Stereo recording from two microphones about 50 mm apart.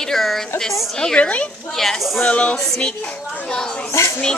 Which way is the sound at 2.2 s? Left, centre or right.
Left.